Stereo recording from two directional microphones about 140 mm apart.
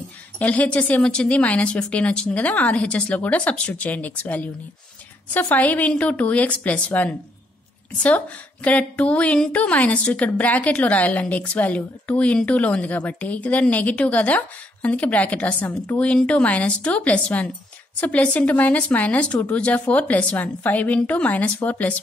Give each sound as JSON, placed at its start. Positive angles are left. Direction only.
{"t": 0.4, "sound": "a woman's voice", "side_deg": 10}
{"t": 8.6, "sound": "a woman's voice", "side_deg": 10}